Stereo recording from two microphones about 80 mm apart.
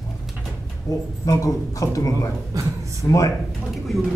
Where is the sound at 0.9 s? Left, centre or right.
Left.